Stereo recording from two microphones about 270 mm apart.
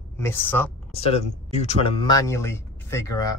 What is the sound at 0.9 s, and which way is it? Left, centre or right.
Speech, left.